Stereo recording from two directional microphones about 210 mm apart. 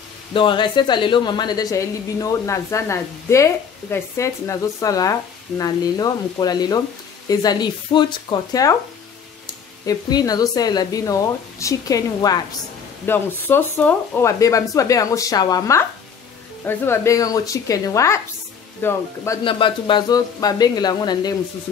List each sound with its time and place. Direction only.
0.3 s a woman's voice: 25° left (ahead or behind)
9.8 s a woman's voice: 20° left (ahead or behind)
19.4 s speech: 25° left (ahead or behind)